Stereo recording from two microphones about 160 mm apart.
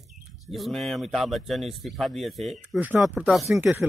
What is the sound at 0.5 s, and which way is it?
Speech, centre (ahead or behind).